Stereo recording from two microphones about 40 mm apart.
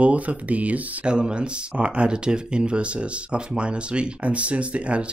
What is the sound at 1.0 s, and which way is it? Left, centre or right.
Speech, right.